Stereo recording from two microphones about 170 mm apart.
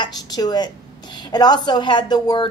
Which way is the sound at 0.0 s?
25° left (ahead or behind).